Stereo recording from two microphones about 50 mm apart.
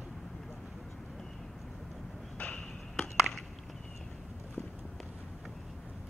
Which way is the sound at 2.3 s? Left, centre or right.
Left.